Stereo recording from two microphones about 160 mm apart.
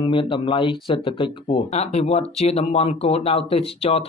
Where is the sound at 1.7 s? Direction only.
45° left (ahead or behind).